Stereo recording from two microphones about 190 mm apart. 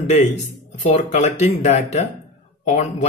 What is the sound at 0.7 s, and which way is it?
Speech, 40° left (ahead or behind).